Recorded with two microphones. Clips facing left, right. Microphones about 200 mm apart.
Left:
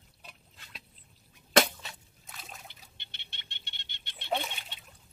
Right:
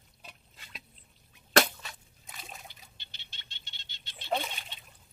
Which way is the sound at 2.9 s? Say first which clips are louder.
Left 2 dB; 60° left (ahead or behind).